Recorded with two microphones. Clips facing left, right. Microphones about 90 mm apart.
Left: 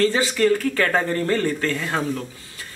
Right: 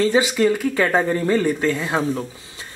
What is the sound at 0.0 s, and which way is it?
Speech, 15° right (ahead or behind).